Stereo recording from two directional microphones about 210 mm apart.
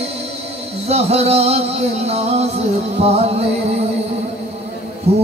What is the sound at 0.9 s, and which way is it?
Music, 30° right (ahead or behind).